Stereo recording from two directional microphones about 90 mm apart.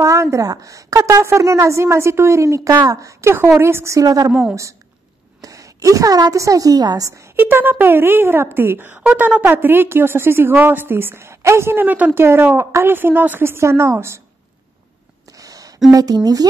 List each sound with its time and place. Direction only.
0.0 s a woman's voice: 35° right (ahead or behind)
5.4 s a woman's voice: 40° right (ahead or behind)
7.3 s a woman's voice: 20° right (ahead or behind)
15.3 s a sound: 40° right (ahead or behind)
15.9 s speech: 45° right (ahead or behind)